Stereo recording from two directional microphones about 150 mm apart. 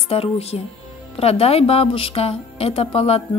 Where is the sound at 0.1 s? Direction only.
40° left (ahead or behind).